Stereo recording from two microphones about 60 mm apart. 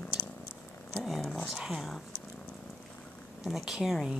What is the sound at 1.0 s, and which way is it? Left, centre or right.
Speech, centre.